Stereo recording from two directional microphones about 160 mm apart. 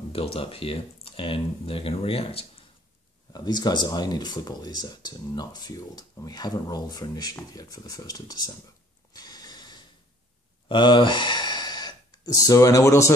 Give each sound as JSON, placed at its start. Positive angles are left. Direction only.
{"t": 0.1, "sound": "speech", "side_deg": 35}
{"t": 3.3, "sound": "speech", "side_deg": 25}
{"t": 9.1, "sound": "a sound", "side_deg": 25}